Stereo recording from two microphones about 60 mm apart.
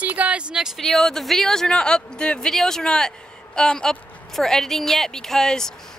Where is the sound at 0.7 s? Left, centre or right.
Centre.